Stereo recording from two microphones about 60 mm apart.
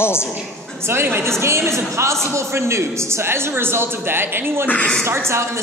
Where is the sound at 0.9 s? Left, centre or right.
Right.